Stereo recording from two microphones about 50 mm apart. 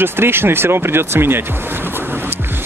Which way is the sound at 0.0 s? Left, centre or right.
Right.